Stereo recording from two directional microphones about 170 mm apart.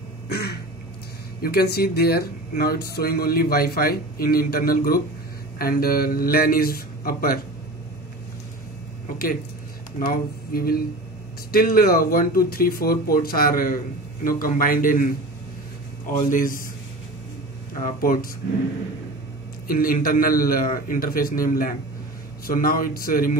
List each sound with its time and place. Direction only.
1.4 s speech: 65° left (ahead or behind)
9.9 s speech: 60° left (ahead or behind)
16.1 s a man's voice: 50° left (ahead or behind)
17.8 s speech: 55° left (ahead or behind)
19.7 s speech: 55° left (ahead or behind)